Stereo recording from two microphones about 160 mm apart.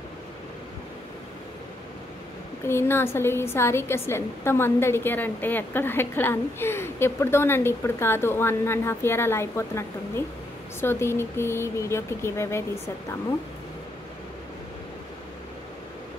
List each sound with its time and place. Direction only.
2.6 s a woman's voice: 15° left (ahead or behind)